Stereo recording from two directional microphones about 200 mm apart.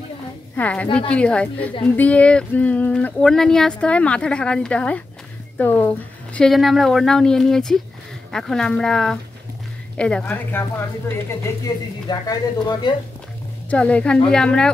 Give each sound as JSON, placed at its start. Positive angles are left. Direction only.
{"t": 0.6, "sound": "a woman's voice", "side_deg": 5}
{"t": 13.7, "sound": "a woman's voice", "side_deg": 5}